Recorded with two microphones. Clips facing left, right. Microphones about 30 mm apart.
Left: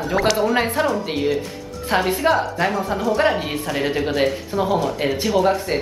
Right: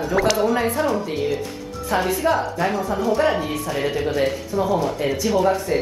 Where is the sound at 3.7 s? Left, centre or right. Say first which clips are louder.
Left 1 dB; left.